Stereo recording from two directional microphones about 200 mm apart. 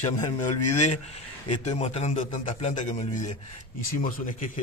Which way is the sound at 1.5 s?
30° left (ahead or behind).